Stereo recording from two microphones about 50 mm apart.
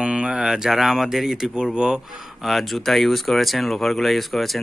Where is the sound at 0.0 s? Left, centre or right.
Centre.